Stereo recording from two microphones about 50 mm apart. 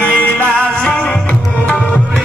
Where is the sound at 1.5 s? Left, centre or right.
Left.